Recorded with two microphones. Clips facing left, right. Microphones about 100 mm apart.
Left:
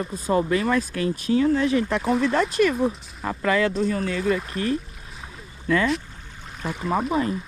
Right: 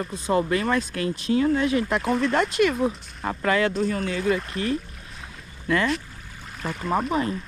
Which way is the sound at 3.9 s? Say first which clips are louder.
Left 1 dB; 35° left (ahead or behind).